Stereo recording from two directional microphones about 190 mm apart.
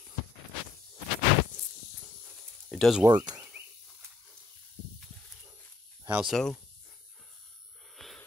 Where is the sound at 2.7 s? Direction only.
Centre (ahead or behind).